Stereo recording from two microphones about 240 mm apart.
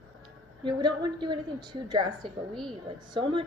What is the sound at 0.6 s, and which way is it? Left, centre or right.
A woman's voice, centre.